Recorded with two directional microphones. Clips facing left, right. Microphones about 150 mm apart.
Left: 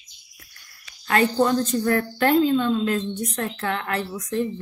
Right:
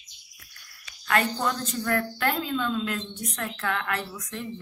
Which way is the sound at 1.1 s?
30° left (ahead or behind).